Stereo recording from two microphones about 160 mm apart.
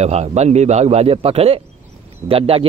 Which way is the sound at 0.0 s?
40° right (ahead or behind).